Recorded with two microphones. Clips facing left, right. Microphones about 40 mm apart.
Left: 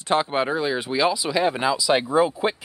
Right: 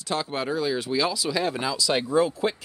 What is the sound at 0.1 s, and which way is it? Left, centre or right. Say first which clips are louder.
Speech: left 6 dB; left.